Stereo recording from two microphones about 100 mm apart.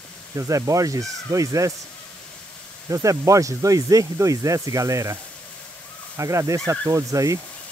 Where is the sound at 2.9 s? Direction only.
35° right (ahead or behind).